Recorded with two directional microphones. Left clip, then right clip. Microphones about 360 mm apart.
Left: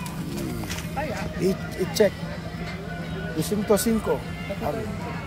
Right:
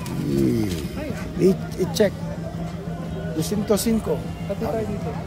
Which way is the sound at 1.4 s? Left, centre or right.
Centre.